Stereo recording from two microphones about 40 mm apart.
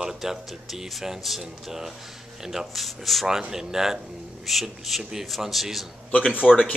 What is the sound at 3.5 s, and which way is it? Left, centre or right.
A man's voice, centre.